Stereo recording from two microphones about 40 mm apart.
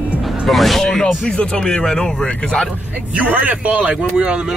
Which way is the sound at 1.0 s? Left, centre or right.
Centre.